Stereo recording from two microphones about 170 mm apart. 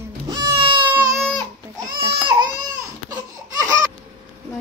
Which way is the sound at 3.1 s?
20° right (ahead or behind).